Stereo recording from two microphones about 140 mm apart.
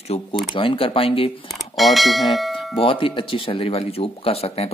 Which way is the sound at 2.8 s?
40° left (ahead or behind).